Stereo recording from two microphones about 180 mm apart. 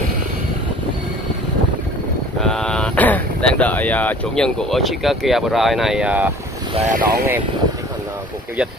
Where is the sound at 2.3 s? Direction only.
5° left (ahead or behind).